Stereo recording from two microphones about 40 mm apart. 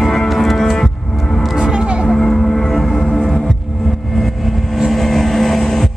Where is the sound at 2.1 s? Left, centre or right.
Centre.